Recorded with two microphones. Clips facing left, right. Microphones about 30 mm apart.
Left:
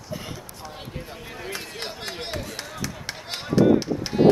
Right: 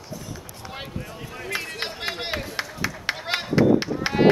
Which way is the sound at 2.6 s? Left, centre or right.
Right.